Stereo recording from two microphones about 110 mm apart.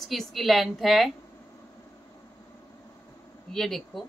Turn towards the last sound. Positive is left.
turn(degrees=0)  # may be behind; listen again after turning